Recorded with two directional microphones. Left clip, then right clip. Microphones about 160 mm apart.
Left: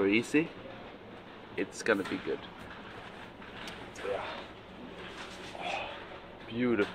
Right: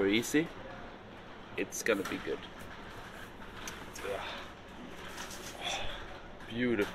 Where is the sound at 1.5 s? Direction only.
15° left (ahead or behind).